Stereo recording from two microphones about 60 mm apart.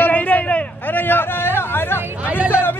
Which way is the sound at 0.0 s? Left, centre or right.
Left.